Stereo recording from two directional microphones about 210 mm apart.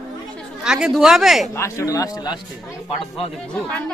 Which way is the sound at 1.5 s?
15° left (ahead or behind).